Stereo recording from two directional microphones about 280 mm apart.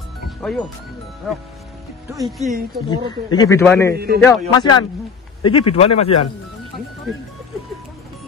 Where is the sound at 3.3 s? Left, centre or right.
Centre.